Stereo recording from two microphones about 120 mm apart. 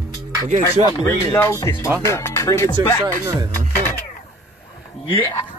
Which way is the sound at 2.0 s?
25° left (ahead or behind).